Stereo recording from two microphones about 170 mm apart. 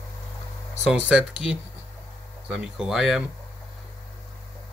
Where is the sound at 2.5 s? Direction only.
5° right (ahead or behind).